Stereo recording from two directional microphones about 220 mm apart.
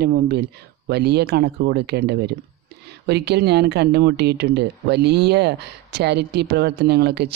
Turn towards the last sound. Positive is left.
turn(degrees=-50)  # may be behind; listen again after turning